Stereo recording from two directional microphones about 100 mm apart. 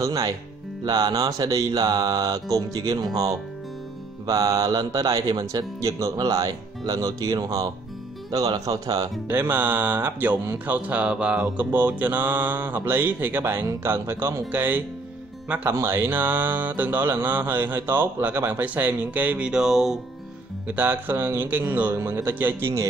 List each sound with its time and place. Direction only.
0.0 s speech: 35° right (ahead or behind)
4.3 s speech: 35° right (ahead or behind)
9.3 s speech: 20° right (ahead or behind); by 20.0 s 5° right (ahead or behind)
20.6 s speech: 20° right (ahead or behind)